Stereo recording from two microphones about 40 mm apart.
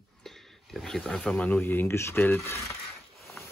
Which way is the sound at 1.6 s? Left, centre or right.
Left.